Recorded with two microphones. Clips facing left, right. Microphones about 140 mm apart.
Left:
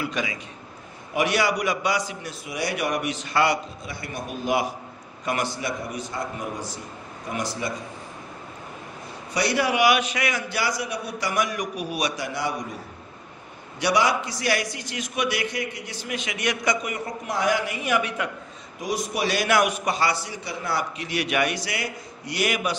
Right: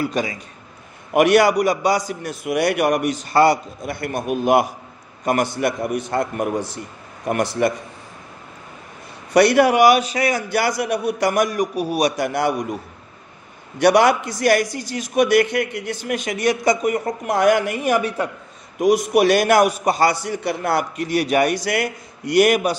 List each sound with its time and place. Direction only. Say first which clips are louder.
0.0 s a man's voice: right 6 dB; 40° right (ahead or behind)
1.1 s a man's voice: right 9 dB; 55° right (ahead or behind)
3.8 s a man's voice: right 9 dB; 60° right (ahead or behind)
9.3 s a man's voice: right 10 dB; 60° right (ahead or behind); by 10.4 s 35° right (ahead or behind)
10.5 s a man's voice: right 7 dB; 55° right (ahead or behind)
12.3 s a man's voice: right 8 dB; 60° right (ahead or behind)
13.7 s a man's voice: right 8 dB; 55° right (ahead or behind); by 18.3 s 35° right (ahead or behind)
18.8 s a man's voice: right 11 dB; 60° right (ahead or behind)